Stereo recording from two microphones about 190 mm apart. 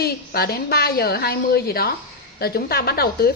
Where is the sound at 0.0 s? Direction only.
55° left (ahead or behind).